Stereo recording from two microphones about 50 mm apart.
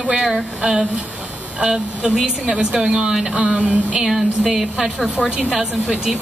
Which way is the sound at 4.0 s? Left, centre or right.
Centre.